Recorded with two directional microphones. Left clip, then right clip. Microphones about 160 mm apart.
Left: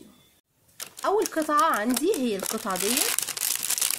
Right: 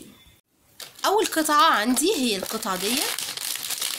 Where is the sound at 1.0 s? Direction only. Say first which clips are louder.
Right 3 dB; 40° left (ahead or behind).